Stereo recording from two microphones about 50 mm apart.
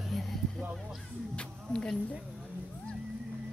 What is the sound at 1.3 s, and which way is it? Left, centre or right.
Speech, centre.